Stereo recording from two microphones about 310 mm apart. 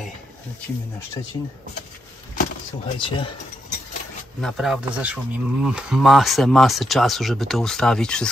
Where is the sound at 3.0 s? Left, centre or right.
Centre.